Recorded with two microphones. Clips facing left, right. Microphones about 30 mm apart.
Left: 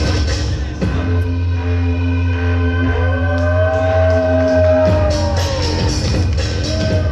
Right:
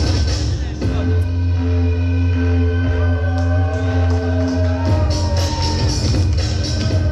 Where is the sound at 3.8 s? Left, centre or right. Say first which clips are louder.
Left 8 dB; left.